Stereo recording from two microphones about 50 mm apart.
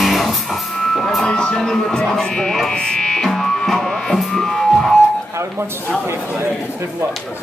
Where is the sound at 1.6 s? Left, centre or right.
Centre.